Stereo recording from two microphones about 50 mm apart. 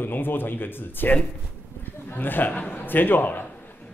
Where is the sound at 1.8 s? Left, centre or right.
Left.